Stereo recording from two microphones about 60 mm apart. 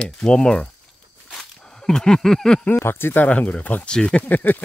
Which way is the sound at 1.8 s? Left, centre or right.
Centre.